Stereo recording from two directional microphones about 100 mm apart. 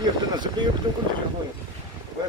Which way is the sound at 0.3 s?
45° right (ahead or behind).